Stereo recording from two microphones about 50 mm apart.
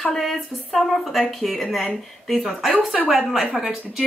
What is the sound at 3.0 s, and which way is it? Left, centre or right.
Speech, centre.